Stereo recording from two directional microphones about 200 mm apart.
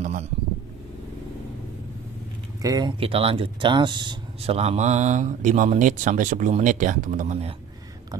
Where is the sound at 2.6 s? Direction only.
20° right (ahead or behind).